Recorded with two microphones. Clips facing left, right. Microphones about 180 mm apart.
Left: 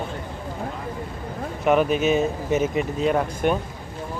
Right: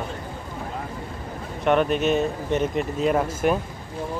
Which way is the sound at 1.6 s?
5° left (ahead or behind).